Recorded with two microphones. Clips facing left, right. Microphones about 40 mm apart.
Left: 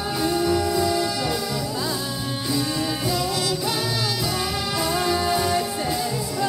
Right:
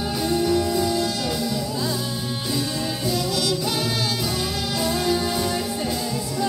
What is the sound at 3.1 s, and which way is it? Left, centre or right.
Music, left.